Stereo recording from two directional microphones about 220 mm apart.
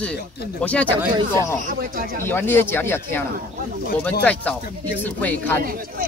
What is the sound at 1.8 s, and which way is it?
Speech, 40° right (ahead or behind).